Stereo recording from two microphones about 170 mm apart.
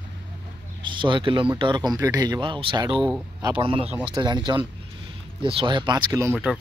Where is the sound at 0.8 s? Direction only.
30° right (ahead or behind).